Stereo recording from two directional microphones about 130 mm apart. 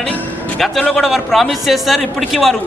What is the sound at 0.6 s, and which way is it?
A man's voice, 5° left (ahead or behind).